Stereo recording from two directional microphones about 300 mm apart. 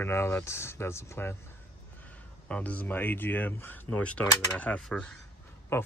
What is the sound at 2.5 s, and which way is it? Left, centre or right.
Speech, centre.